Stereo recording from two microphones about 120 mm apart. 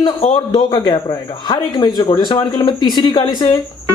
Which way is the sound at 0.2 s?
60° left (ahead or behind).